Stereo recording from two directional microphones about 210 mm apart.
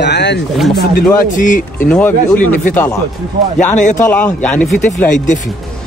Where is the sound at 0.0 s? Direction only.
55° left (ahead or behind).